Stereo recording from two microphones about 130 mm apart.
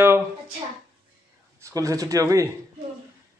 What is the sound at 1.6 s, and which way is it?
Speech, 25° right (ahead or behind).